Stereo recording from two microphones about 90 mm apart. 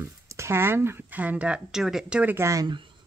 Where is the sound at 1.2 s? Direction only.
15° right (ahead or behind).